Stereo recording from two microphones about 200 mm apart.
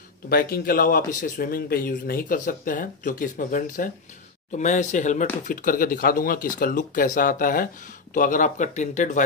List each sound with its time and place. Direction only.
0.3 s speech: 50° left (ahead or behind)